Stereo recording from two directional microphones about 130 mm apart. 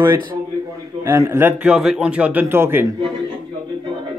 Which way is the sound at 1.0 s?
20° right (ahead or behind).